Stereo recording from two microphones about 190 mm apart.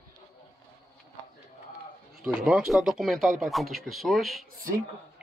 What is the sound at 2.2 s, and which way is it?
Speech, 5° right (ahead or behind).